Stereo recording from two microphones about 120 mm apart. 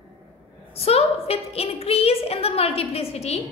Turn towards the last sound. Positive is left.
turn(degrees=60)  # may be behind; listen again after turning